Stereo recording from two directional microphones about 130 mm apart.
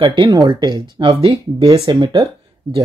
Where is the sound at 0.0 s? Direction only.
35° right (ahead or behind).